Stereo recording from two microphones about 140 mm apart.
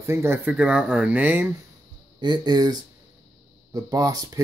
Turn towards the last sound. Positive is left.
turn(degrees=-25)  # may be behind; listen again after turning